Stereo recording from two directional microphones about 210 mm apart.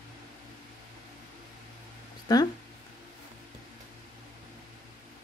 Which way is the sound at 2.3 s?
20° left (ahead or behind).